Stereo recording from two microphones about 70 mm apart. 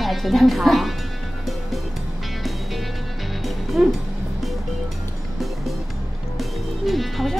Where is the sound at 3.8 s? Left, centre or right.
Centre.